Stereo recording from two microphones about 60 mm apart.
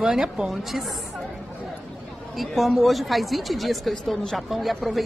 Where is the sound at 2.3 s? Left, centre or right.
Centre.